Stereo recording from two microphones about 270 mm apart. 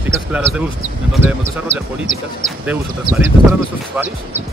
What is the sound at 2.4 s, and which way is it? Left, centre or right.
Speech, centre.